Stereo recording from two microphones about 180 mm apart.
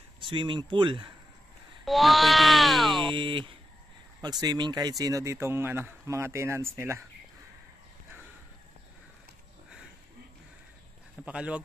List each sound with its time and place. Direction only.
0.2 s speech: 25° right (ahead or behind)
1.9 s speech: centre (ahead or behind)
3.1 s speech: 25° right (ahead or behind)
11.2 s speech: 5° right (ahead or behind)